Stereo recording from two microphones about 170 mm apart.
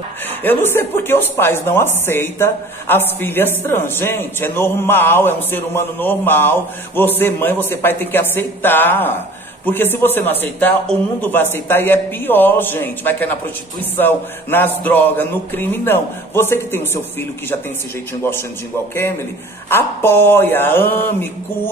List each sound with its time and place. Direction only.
0.4 s speech: 10° left (ahead or behind)
19.7 s speech: 15° left (ahead or behind)